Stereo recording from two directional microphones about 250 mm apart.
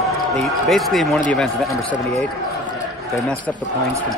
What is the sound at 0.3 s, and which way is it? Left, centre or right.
Speech, centre.